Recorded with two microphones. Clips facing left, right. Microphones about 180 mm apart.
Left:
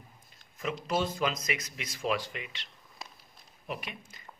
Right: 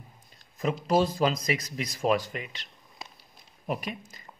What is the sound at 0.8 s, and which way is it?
A man's voice, 35° right (ahead or behind).